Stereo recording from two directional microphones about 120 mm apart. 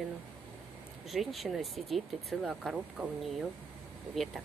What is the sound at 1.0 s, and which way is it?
Speech, centre (ahead or behind).